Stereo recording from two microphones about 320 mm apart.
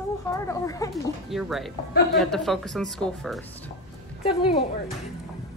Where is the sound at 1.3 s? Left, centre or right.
Centre.